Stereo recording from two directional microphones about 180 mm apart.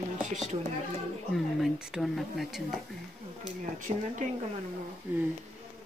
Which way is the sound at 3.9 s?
35° right (ahead or behind).